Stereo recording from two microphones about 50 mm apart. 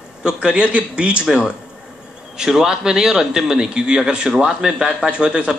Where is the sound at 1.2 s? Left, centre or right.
Centre.